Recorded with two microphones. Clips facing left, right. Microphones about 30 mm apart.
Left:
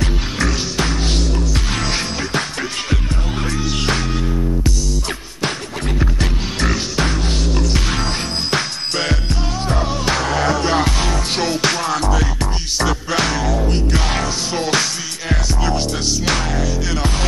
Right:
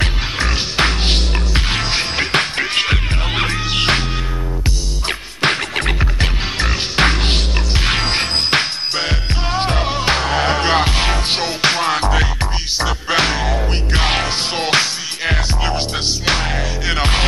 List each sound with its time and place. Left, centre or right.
0.7 s music: right
2.1 s music: right
5.4 s music: right
7.0 s music: right
7.7 s music: right
8.9 s music: centre
9.6 s music: right
9.8 s music: right
14.0 s music: right
14.8 s music: right
16.9 s music: right